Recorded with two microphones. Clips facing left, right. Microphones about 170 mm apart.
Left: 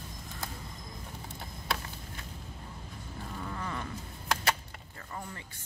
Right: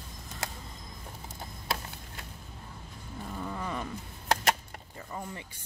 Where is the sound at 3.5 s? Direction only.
10° right (ahead or behind).